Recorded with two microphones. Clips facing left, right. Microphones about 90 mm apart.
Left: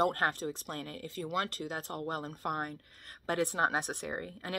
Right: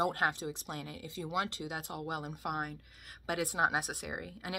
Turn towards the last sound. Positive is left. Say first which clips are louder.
# left 2 dB
turn(degrees=-10)  # may be behind; listen again after turning